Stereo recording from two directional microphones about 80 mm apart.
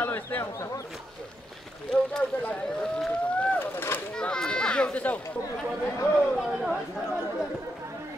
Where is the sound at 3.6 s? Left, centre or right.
Left.